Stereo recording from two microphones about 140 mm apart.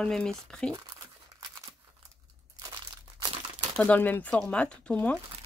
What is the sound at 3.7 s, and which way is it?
Speech, 10° left (ahead or behind).